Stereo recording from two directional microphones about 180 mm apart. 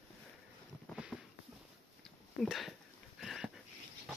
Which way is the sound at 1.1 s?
10° left (ahead or behind).